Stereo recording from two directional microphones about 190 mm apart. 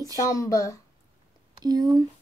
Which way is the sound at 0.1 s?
15° left (ahead or behind).